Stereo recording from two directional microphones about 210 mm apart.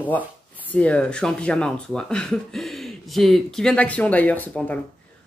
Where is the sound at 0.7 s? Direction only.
5° left (ahead or behind).